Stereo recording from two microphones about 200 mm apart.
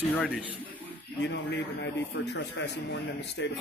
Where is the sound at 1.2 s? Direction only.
60° left (ahead or behind).